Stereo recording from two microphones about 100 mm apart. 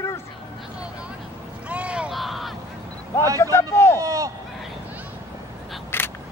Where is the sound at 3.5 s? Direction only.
25° left (ahead or behind).